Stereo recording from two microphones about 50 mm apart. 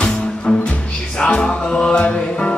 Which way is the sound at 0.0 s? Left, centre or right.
Centre.